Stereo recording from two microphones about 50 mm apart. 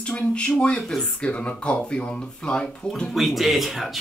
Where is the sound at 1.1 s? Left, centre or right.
Left.